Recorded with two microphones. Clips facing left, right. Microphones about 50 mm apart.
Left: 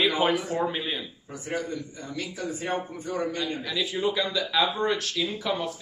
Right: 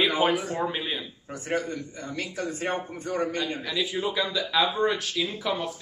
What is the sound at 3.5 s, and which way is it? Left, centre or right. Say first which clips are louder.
Speech: even; centre.